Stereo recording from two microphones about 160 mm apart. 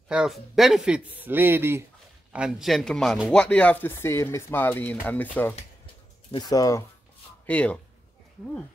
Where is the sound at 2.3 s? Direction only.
5° right (ahead or behind).